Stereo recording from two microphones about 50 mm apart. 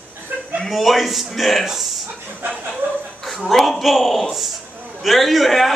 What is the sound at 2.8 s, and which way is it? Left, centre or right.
Chuckle, right.